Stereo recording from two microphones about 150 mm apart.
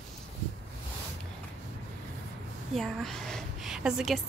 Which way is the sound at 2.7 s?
Centre (ahead or behind).